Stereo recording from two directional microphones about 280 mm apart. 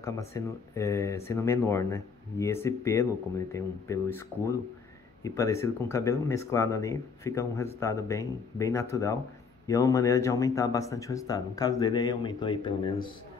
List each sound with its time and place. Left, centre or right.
0.0 s speech: centre